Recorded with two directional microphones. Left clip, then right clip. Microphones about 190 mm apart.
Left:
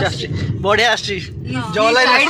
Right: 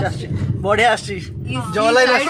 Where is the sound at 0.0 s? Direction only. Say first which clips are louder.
Left 4 dB; 5° right (ahead or behind).